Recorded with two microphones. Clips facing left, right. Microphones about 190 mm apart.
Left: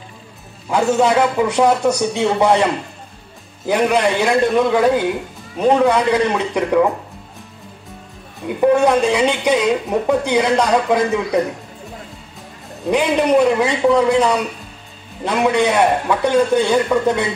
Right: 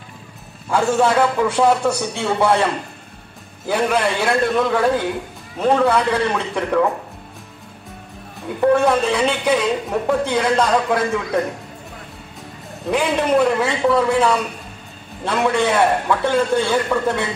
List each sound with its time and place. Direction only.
0.7 s a man's voice: 15° left (ahead or behind)
8.5 s a man's voice: 15° left (ahead or behind)
12.9 s a man's voice: 15° left (ahead or behind)